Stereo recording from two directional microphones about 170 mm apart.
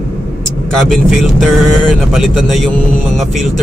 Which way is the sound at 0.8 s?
Centre (ahead or behind).